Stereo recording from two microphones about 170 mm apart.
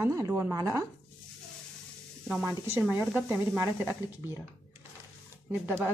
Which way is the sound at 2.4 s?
15° right (ahead or behind).